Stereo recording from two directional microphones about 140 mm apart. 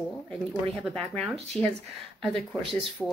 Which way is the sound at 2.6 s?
40° right (ahead or behind).